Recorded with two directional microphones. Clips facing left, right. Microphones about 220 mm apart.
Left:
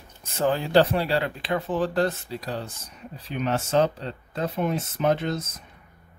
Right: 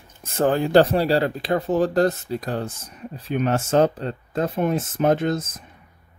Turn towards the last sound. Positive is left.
turn(degrees=-50)  # may be behind; listen again after turning